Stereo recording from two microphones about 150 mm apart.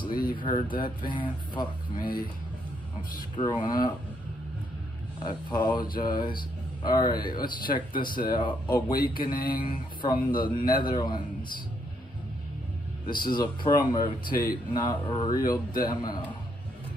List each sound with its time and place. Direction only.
0.0 s speech: 30° left (ahead or behind)
3.3 s speech: 30° left (ahead or behind)
5.2 s speech: 30° left (ahead or behind)
13.0 s a man's voice: 30° left (ahead or behind)